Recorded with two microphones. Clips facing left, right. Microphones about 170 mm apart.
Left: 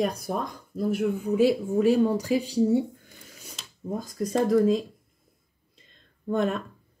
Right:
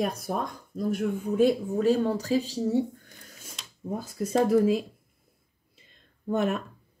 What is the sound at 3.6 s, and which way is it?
Speech, 5° right (ahead or behind).